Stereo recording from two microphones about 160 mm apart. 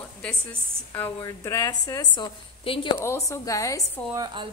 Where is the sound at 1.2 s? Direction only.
20° left (ahead or behind).